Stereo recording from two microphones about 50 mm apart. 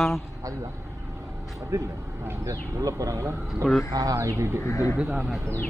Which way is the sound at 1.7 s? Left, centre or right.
Right.